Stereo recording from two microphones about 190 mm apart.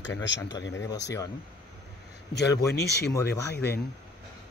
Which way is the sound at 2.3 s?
65° left (ahead or behind).